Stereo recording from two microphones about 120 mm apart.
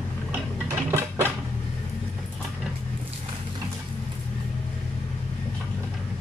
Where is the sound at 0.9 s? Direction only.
20° right (ahead or behind).